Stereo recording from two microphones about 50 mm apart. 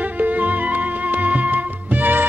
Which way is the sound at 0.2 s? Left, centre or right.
Right.